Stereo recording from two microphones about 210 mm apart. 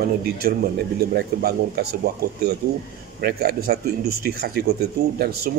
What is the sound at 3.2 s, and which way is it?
Speech, 50° right (ahead or behind).